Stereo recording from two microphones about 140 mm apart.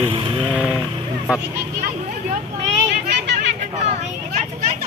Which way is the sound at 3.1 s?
55° right (ahead or behind).